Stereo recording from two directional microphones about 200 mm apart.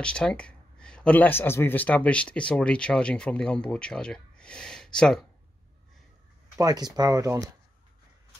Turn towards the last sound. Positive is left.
turn(degrees=-15)  # may be behind; listen again after turning